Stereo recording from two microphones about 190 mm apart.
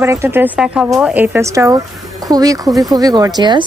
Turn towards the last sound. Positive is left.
turn(degrees=-20)  # may be behind; listen again after turning